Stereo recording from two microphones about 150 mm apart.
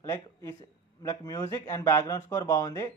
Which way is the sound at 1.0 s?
25° left (ahead or behind).